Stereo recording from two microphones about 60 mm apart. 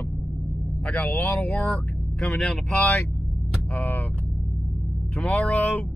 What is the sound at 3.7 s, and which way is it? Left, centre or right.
Vehicle, left.